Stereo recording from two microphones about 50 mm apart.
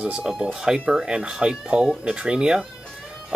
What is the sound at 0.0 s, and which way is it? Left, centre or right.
Speech, right.